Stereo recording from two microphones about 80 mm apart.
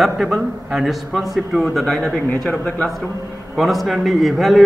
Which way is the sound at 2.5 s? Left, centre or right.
Centre.